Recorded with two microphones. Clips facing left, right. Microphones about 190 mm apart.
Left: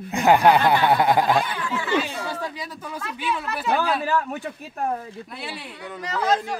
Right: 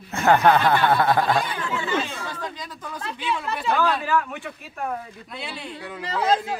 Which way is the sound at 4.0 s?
35° left (ahead or behind).